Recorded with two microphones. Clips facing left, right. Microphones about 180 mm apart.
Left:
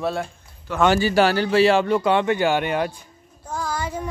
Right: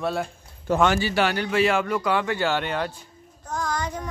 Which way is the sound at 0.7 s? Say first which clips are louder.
Right 2 dB; 45° right (ahead or behind).